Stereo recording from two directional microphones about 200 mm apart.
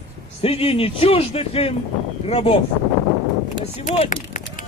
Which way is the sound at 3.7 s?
35° left (ahead or behind).